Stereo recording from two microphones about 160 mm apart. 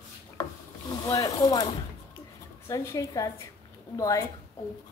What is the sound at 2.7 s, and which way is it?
Speech, 20° left (ahead or behind).